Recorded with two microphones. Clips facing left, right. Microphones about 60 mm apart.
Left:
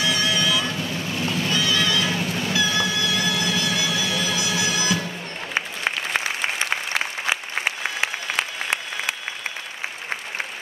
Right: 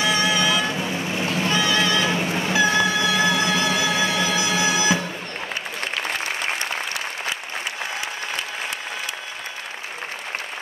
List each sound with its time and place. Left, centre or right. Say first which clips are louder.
0.0 s vehicle: right 2 dB; right